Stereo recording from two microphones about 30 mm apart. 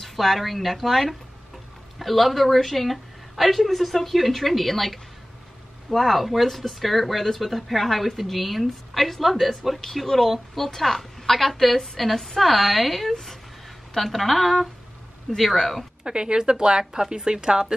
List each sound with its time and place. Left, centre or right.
0.0 s a woman's voice: centre
15.5 s a woman's voice: centre
16.0 s speech: right